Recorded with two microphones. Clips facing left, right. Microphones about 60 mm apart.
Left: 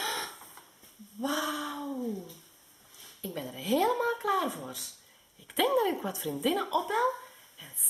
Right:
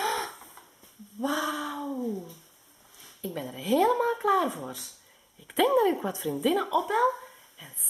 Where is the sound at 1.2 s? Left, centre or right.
Centre.